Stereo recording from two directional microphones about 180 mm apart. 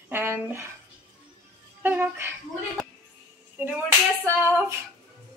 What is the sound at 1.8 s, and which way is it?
Speech, 10° right (ahead or behind).